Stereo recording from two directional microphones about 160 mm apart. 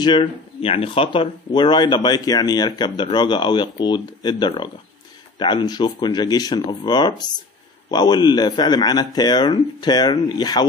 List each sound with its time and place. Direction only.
0.0 s speech: 30° left (ahead or behind)